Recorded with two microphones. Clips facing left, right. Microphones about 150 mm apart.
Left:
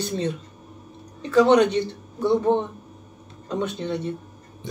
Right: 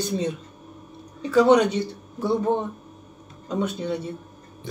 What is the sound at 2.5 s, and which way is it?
Speech, 20° left (ahead or behind).